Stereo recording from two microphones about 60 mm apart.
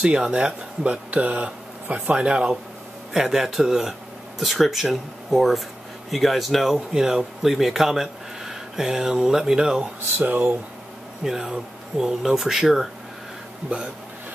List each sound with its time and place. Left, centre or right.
0.0 s speech: centre
10.1 s speech: right
11.2 s speech: centre